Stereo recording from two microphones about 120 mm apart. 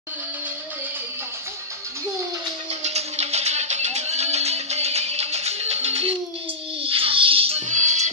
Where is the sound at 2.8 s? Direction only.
65° right (ahead or behind).